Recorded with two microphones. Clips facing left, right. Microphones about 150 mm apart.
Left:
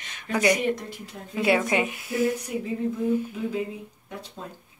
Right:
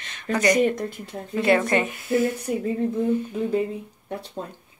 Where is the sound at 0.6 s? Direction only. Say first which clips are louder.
Right 5 dB; 50° right (ahead or behind).